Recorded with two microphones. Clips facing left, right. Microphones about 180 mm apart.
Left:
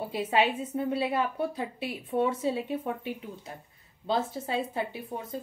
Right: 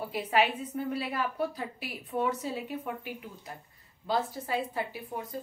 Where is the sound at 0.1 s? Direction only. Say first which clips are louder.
Left 1 dB; 25° left (ahead or behind).